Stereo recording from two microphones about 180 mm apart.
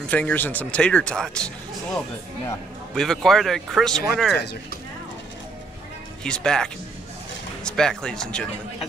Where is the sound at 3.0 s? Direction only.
Centre (ahead or behind).